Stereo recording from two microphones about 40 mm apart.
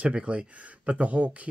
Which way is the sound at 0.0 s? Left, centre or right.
Right.